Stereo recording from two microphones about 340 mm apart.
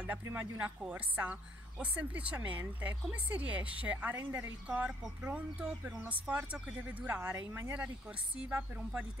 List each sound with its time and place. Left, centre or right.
0.0 s a woman's voice: centre